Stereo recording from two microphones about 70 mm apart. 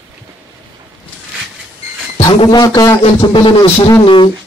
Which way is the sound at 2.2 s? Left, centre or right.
Left.